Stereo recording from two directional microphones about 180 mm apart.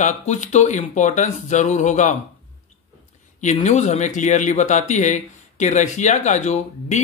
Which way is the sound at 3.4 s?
40° left (ahead or behind).